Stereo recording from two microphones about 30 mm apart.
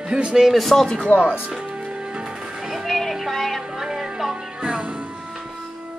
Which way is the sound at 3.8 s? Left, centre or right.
Centre.